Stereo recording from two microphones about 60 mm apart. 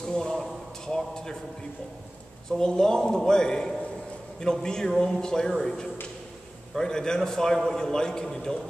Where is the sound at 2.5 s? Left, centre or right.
Centre.